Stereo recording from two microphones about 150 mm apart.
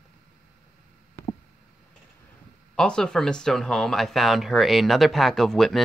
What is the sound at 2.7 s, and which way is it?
Speech, 5° left (ahead or behind).